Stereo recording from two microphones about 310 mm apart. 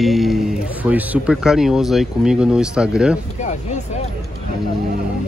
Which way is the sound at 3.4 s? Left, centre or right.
Left.